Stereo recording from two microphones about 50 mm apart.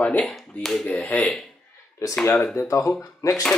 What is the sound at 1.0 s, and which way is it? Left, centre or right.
Speech, left.